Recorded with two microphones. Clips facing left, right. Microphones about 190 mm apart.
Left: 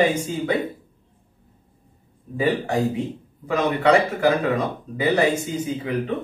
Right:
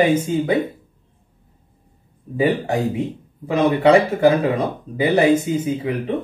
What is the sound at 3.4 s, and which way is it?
Speech, 25° right (ahead or behind).